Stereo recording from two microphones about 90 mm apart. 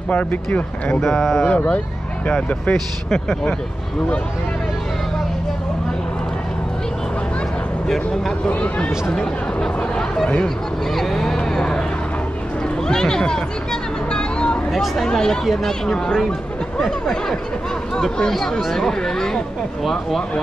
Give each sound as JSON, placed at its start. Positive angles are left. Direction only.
{"t": 0.1, "sound": "speech", "side_deg": 15}
{"t": 1.0, "sound": "speech", "side_deg": 0}
{"t": 1.4, "sound": "speech", "side_deg": 15}
{"t": 8.5, "sound": "speech", "side_deg": 15}
{"t": 11.0, "sound": "a sound", "side_deg": 5}
{"t": 12.8, "sound": "speech", "side_deg": 5}
{"t": 14.1, "sound": "a sound", "side_deg": 10}
{"t": 14.7, "sound": "speech", "side_deg": 0}